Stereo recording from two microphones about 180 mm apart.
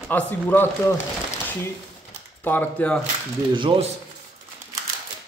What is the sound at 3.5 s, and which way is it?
Speech, 25° right (ahead or behind).